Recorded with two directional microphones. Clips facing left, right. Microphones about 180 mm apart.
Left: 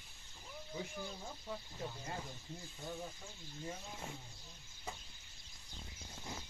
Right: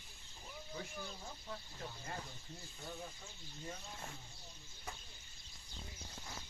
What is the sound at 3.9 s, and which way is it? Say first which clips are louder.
Speech: left 3 dB; 10° left (ahead or behind).